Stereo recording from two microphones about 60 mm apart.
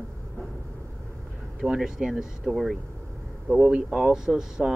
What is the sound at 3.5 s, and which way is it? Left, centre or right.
Speech, right.